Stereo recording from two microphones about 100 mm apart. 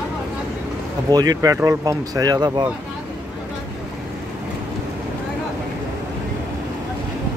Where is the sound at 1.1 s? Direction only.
40° right (ahead or behind).